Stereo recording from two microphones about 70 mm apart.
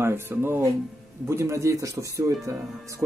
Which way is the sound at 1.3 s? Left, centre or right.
Right.